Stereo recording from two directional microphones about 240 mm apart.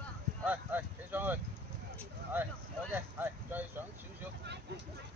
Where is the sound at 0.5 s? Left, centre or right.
Centre.